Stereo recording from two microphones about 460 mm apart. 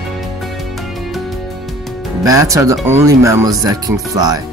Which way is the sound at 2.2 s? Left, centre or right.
Centre.